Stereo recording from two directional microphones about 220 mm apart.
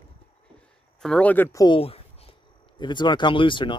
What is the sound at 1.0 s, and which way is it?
Speech, 5° left (ahead or behind).